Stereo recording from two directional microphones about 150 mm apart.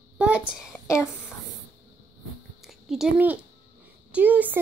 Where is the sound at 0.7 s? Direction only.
20° left (ahead or behind).